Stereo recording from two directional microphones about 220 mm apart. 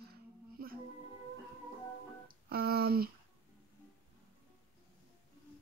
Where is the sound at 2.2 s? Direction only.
45° right (ahead or behind).